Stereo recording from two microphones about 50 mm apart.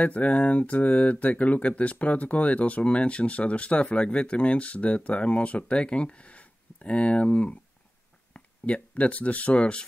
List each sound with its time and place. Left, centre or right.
0.0 s speech: left